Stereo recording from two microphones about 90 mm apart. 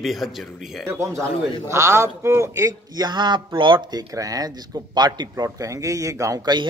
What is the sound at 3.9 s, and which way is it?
Speech, 40° right (ahead or behind).